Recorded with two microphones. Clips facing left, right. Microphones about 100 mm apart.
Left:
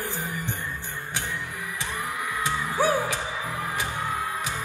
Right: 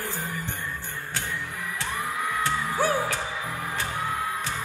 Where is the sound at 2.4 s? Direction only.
15° left (ahead or behind).